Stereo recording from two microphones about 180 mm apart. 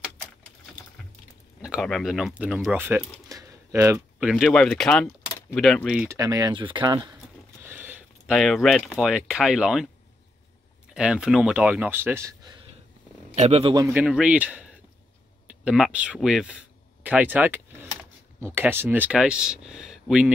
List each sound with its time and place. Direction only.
1.6 s speech: 5° right (ahead or behind)
3.3 s a sound: 15° right (ahead or behind)
4.3 s speech: centre (ahead or behind)
6.0 s speech: 20° right (ahead or behind)
7.6 s speech: 10° right (ahead or behind)
11.0 s speech: 5° right (ahead or behind)
13.3 s a man's voice: 35° right (ahead or behind)
13.7 s speech: 10° right (ahead or behind)